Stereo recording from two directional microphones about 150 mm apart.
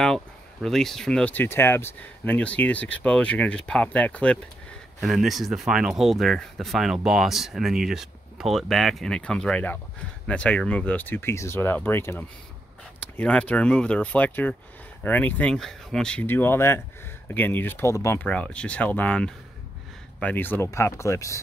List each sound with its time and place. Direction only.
0.0 s speech: 5° left (ahead or behind); by 21.4 s 20° left (ahead or behind)